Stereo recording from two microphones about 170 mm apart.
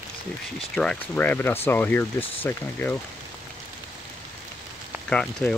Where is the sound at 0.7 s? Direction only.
5° left (ahead or behind).